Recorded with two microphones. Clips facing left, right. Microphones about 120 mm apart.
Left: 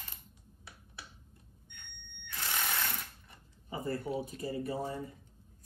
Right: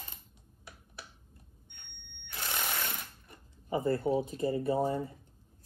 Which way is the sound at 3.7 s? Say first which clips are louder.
Right 7 dB; 25° right (ahead or behind).